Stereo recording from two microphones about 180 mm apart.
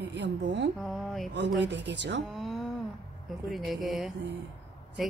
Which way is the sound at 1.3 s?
80° right.